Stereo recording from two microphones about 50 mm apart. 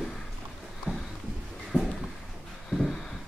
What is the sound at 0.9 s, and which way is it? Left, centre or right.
Boat, right.